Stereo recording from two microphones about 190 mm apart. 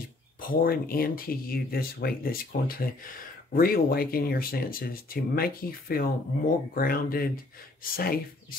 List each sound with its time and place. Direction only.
0.4 s speech: 50° left (ahead or behind)